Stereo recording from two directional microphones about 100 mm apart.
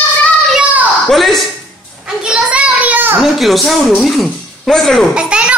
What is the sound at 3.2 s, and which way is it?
Speech, centre (ahead or behind).